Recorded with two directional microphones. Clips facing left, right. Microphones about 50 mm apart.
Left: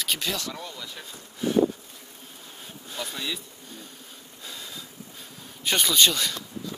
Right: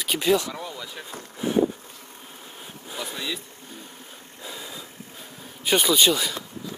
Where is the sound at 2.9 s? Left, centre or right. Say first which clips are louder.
Right 1 dB; centre.